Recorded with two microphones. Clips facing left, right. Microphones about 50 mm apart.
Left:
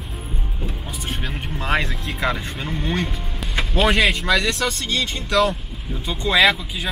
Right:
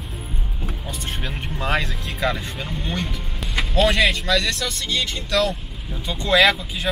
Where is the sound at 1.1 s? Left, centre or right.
Centre.